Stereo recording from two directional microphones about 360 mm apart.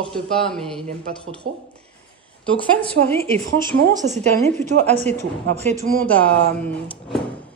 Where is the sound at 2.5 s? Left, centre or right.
Centre.